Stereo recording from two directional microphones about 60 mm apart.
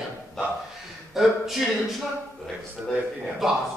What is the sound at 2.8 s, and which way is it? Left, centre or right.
Speech, right.